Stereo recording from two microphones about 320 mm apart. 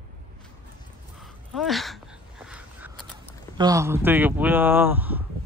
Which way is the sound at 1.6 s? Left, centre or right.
Centre.